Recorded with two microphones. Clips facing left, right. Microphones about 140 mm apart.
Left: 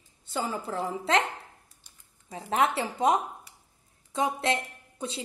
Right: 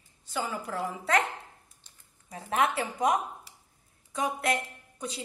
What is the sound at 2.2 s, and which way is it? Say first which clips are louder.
A woman's voice: left 2 dB; 25° left (ahead or behind).